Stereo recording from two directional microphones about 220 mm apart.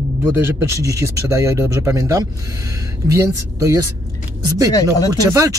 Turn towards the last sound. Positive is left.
turn(degrees=-15)  # may be behind; listen again after turning